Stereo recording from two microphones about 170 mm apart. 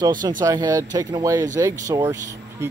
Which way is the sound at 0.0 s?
25° right (ahead or behind).